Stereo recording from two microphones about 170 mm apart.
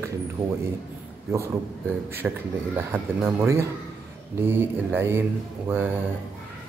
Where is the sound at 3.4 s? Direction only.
15° right (ahead or behind).